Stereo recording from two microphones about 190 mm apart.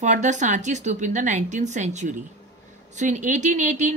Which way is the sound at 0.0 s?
40° right (ahead or behind).